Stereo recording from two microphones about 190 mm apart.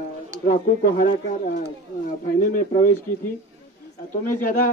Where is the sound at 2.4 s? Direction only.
45° left (ahead or behind).